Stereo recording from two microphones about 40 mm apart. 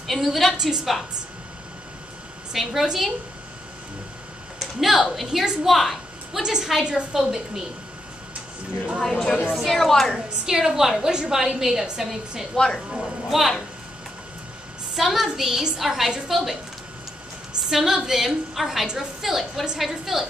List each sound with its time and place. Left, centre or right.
0.0 s a woman's voice: centre
2.5 s a woman's voice: centre
4.6 s a woman's voice: centre
5.7 s a sound: centre
6.4 s a woman's voice: centre
9.0 s a woman's voice: centre
10.4 s a woman's voice: centre
12.5 s a woman's voice: centre
13.0 s a woman's voice: centre
15.0 s a woman's voice: centre
17.6 s a woman's voice: centre